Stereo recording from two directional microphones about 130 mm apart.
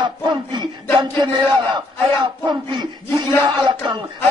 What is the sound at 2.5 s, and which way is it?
Speech, 35° right (ahead or behind).